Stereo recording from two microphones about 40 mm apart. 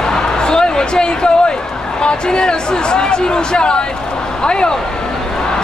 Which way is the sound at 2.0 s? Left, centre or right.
Left.